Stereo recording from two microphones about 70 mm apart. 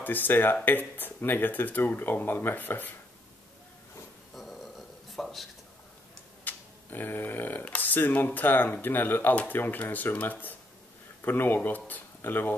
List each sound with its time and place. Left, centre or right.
0.0 s speech: left
4.4 s a sound: centre
6.4 s speech: left